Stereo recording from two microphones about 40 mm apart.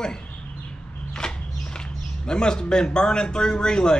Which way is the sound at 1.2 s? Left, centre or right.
Centre.